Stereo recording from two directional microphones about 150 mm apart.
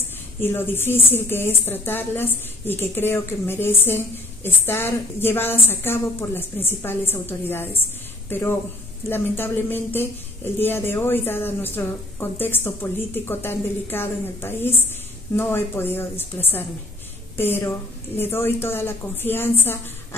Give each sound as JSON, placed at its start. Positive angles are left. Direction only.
{"t": 0.4, "sound": "a woman's voice", "side_deg": 15}